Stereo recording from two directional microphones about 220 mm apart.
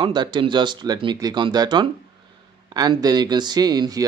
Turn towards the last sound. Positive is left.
turn(degrees=-15)  # may be behind; listen again after turning